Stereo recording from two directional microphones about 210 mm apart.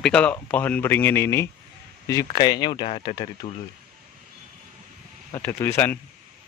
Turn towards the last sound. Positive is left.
turn(degrees=10)  # may be behind; listen again after turning